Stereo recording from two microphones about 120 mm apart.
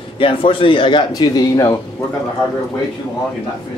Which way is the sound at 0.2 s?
45° left (ahead or behind).